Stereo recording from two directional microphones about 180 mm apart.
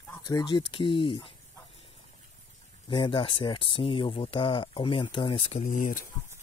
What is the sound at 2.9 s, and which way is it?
Speech, 25° left (ahead or behind).